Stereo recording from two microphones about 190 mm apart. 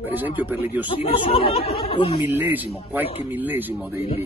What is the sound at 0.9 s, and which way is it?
Speech, 30° left (ahead or behind).